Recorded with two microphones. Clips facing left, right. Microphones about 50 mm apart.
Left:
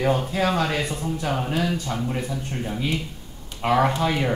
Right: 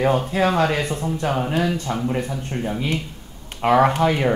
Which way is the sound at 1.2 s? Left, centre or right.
Centre.